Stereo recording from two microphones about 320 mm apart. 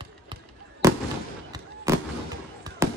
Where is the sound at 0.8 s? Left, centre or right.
Centre.